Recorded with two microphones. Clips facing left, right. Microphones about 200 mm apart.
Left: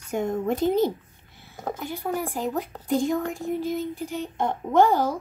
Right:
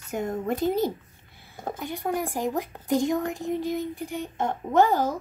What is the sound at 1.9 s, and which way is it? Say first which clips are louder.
A woman's voice: right 2 dB; 15° right (ahead or behind).